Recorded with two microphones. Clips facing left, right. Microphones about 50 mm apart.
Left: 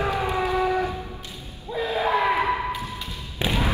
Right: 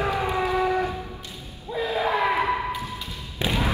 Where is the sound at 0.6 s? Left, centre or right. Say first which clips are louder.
Even; centre.